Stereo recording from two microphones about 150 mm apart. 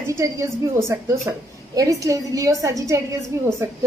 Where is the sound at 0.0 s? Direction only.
20° right (ahead or behind).